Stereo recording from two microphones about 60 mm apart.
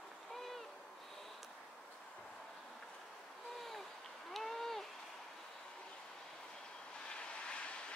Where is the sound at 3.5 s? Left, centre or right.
Centre.